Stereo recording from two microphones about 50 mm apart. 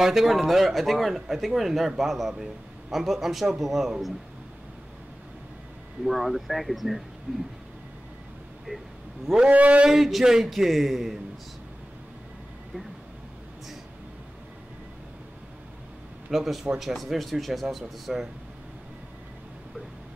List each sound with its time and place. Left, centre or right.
0.0 s speech: centre
6.0 s speech: centre
9.5 s a sound: right
9.8 s speech: centre
16.3 s speech: centre